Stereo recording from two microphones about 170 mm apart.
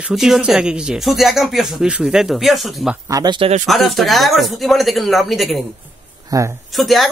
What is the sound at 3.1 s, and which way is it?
Speech, 25° right (ahead or behind).